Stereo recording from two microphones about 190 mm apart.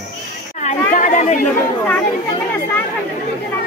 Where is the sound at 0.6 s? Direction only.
40° left (ahead or behind).